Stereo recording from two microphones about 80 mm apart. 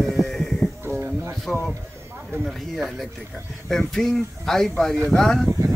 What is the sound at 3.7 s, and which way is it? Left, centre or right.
Speech, centre.